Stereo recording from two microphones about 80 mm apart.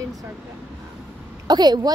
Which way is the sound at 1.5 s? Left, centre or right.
Right.